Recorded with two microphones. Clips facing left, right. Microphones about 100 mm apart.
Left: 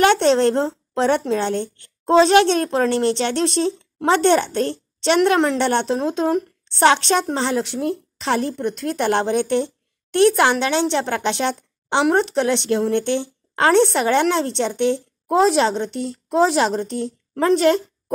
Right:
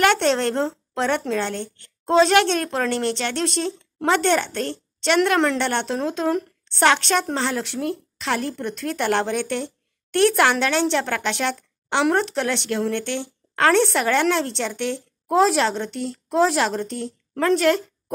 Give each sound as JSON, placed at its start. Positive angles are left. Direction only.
{"t": 0.0, "sound": "a woman's voice", "side_deg": 20}